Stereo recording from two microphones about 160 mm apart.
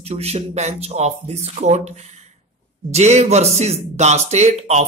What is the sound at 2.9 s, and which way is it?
Speech, 45° right (ahead or behind).